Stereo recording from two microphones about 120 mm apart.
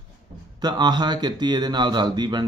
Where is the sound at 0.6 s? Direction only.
35° right (ahead or behind).